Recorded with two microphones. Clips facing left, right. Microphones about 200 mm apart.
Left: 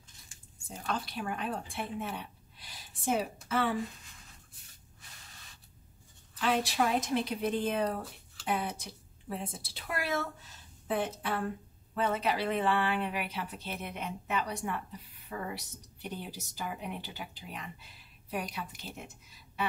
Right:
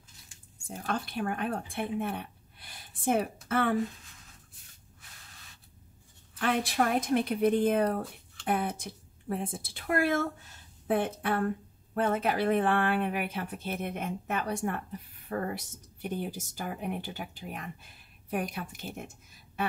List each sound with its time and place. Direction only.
0.7 s speech: 50° right (ahead or behind)
6.3 s a woman's voice: 55° right (ahead or behind)